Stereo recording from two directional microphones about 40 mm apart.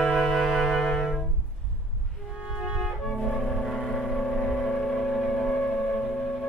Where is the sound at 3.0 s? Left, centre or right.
Centre.